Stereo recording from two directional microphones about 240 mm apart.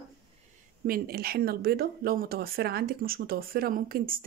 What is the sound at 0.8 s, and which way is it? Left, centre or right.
Speech, right.